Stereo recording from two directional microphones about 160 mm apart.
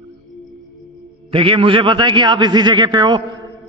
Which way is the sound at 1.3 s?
35° right (ahead or behind).